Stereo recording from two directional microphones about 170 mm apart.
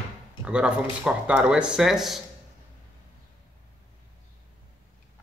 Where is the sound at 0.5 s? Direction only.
5° right (ahead or behind).